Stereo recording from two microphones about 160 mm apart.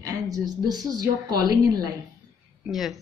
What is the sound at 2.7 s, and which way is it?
Speech, centre (ahead or behind).